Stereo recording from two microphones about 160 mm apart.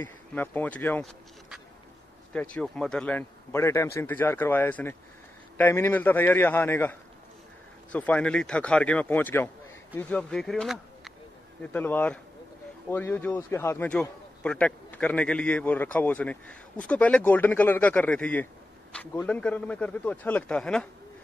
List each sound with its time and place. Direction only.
0.0 s a man's voice: 10° left (ahead or behind)
2.3 s a man's voice: 10° left (ahead or behind)
11.6 s a man's voice: 10° left (ahead or behind)